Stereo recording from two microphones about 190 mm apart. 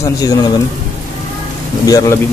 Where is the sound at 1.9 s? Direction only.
20° left (ahead or behind).